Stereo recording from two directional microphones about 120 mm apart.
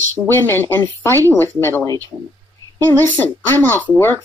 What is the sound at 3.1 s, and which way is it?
Speech, 15° left (ahead or behind).